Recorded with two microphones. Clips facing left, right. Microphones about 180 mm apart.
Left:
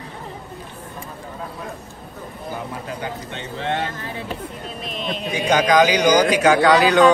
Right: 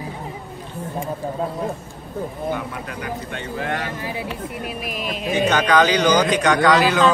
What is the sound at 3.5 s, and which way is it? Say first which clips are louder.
Speech: left 2 dB; 25° left (ahead or behind).